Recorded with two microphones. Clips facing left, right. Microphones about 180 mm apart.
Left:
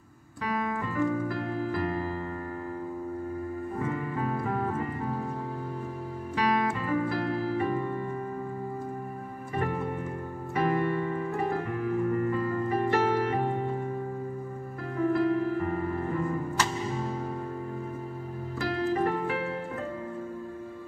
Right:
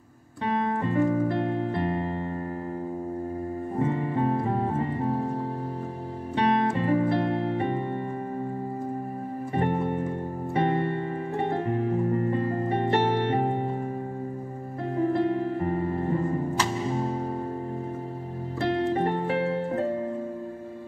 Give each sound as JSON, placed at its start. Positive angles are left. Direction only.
{"t": 0.5, "sound": "piano", "side_deg": -30}
{"t": 3.7, "sound": "music", "side_deg": -30}
{"t": 6.3, "sound": "music", "side_deg": -30}
{"t": 9.6, "sound": "music", "side_deg": -30}
{"t": 15.0, "sound": "music", "side_deg": -30}
{"t": 18.6, "sound": "music", "side_deg": -30}